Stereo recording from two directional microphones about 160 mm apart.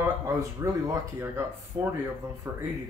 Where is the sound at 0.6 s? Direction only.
20° right (ahead or behind).